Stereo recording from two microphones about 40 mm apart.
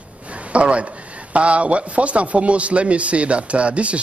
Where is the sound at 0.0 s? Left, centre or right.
Right.